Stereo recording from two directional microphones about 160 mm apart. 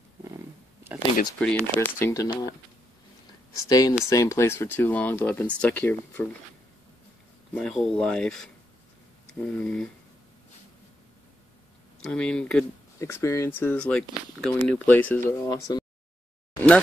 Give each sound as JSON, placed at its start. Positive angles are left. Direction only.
{"t": 1.4, "sound": "speech", "side_deg": 10}
{"t": 2.2, "sound": "speech", "side_deg": 30}
{"t": 3.6, "sound": "speech", "side_deg": 25}
{"t": 7.5, "sound": "speech", "side_deg": 5}
{"t": 12.0, "sound": "speech", "side_deg": 5}
{"t": 13.0, "sound": "speech", "side_deg": 15}
{"t": 15.2, "sound": "speech", "side_deg": 20}